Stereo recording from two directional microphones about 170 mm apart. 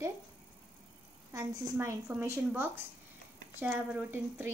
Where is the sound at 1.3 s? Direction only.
15° right (ahead or behind).